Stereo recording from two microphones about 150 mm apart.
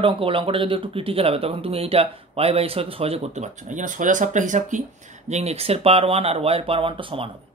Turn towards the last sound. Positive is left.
turn(degrees=-35)  # may be behind; listen again after turning